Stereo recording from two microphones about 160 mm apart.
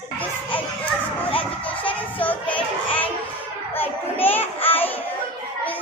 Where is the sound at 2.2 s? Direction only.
10° left (ahead or behind).